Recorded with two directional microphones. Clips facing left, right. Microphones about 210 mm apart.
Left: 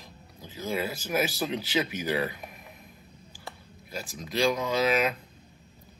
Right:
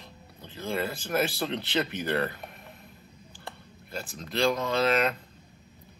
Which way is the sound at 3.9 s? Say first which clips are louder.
Left 1 dB; 10° left (ahead or behind).